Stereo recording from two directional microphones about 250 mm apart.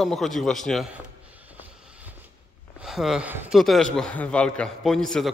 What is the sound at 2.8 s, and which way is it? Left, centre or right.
A man's voice, centre.